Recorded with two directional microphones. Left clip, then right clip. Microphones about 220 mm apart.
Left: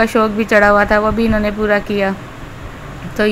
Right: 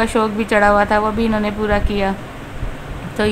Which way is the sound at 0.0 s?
10° left (ahead or behind).